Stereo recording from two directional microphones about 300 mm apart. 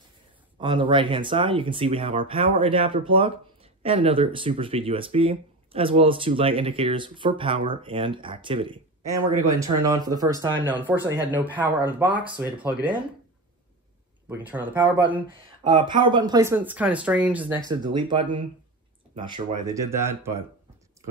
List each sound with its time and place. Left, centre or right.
0.6 s speech: centre
14.4 s speech: centre